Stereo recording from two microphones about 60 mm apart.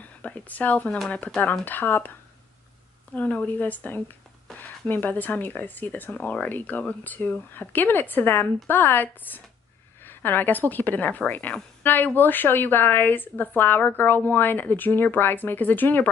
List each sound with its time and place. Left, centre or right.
0.0 s speech: left
3.2 s speech: left